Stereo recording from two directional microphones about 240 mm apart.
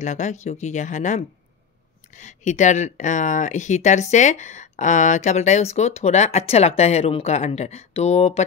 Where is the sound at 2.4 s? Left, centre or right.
Left.